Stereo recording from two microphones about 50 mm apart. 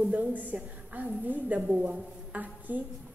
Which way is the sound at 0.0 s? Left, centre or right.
Right.